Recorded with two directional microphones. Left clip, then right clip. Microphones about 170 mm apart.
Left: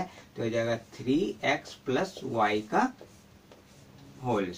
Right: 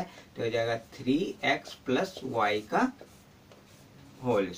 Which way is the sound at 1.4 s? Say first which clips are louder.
Even; 20° right (ahead or behind).